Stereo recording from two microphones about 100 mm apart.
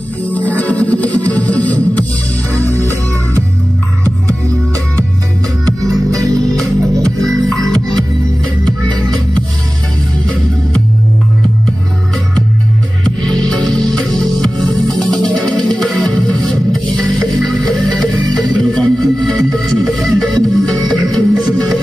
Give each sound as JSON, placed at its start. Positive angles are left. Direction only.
{"t": 0.3, "sound": "music", "side_deg": 15}
{"t": 6.1, "sound": "music", "side_deg": -35}
{"t": 7.2, "sound": "music", "side_deg": 5}
{"t": 13.0, "sound": "music", "side_deg": 5}